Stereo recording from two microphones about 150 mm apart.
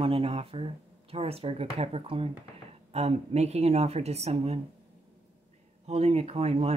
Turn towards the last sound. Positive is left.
turn(degrees=-40)  # may be behind; listen again after turning